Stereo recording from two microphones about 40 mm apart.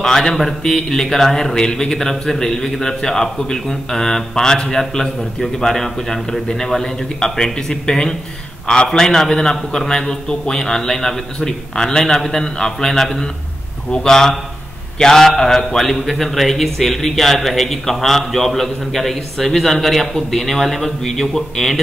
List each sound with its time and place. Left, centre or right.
0.0 s a man's voice: centre